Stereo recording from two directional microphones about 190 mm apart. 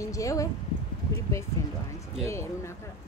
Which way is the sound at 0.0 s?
15° left (ahead or behind).